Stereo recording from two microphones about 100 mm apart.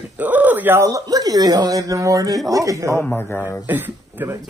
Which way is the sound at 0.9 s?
35° right (ahead or behind).